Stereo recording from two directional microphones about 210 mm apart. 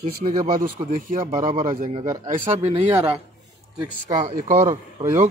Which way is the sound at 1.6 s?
35° right (ahead or behind).